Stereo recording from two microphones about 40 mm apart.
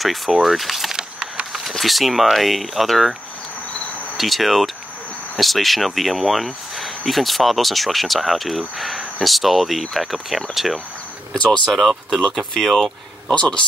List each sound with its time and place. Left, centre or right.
0.0 s speech: centre
4.2 s speech: centre
13.3 s speech: left